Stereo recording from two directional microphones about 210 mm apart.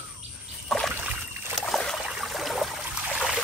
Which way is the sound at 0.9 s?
10° right (ahead or behind).